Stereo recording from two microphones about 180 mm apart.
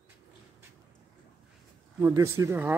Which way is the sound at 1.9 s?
15° right (ahead or behind).